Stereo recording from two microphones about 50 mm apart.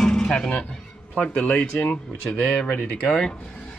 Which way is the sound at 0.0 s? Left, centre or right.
Centre.